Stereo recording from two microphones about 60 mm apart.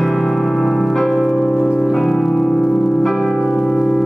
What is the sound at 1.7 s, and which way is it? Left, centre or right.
Music, centre.